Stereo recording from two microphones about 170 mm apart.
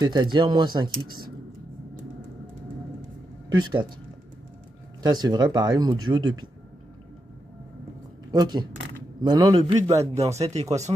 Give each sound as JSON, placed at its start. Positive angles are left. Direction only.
{"t": 0.0, "sound": "speech", "side_deg": -25}
{"t": 3.4, "sound": "speech", "side_deg": -25}
{"t": 5.0, "sound": "speech", "side_deg": -25}
{"t": 8.3, "sound": "speech", "side_deg": -25}
{"t": 10.1, "sound": "speech", "side_deg": -40}